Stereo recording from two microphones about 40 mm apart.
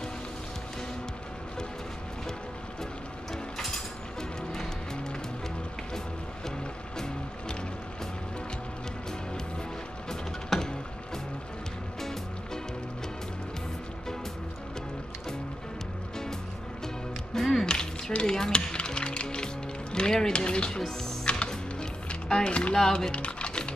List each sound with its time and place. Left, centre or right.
4.2 s music: centre
10.0 s music: centre
16.8 s music: centre
17.6 s music: left
22.3 s speech: left
23.1 s typing: left